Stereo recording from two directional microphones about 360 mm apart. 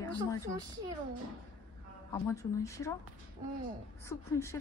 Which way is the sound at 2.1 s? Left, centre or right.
Centre.